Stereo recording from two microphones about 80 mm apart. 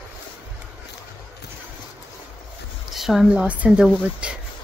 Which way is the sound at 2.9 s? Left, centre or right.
Centre.